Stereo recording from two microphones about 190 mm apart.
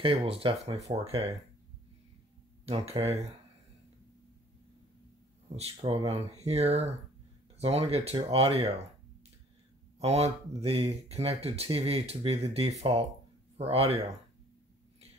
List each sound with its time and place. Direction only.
0.0 s speech: 30° right (ahead or behind)
2.6 s speech: 30° right (ahead or behind)
5.6 s speech: 30° right (ahead or behind)
9.9 s speech: 35° right (ahead or behind)